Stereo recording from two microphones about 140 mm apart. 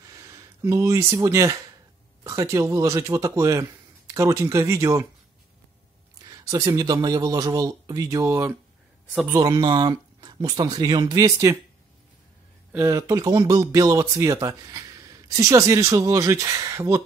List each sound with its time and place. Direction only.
0.0 s a sound: 25° right (ahead or behind)
2.2 s speech: 20° right (ahead or behind)
6.3 s speech: 25° right (ahead or behind)
12.7 s speech: 25° right (ahead or behind)